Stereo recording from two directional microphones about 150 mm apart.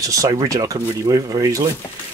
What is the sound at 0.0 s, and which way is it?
Speech, 25° right (ahead or behind).